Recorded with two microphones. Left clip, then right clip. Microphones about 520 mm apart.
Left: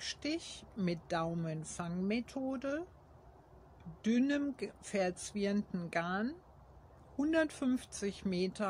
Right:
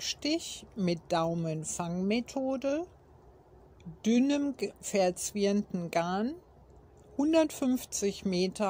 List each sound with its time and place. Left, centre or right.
0.0 s speech: left
4.0 s speech: left